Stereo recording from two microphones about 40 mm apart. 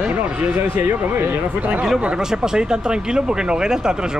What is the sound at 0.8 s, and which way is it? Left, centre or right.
Speech, right.